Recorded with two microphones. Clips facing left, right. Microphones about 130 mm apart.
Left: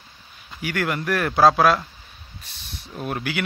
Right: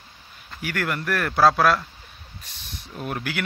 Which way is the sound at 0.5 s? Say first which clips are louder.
Left 2 dB; 10° left (ahead or behind).